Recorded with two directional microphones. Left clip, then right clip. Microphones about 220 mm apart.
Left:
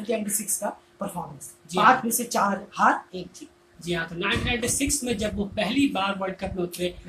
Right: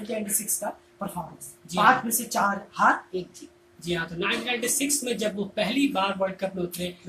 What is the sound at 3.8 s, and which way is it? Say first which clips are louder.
Speech: even; 5° right (ahead or behind).